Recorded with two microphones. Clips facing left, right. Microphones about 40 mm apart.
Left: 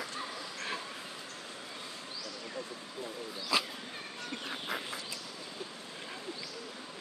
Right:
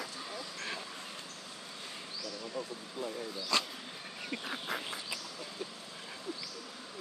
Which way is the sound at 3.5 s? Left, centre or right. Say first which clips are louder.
Left 2 dB; centre.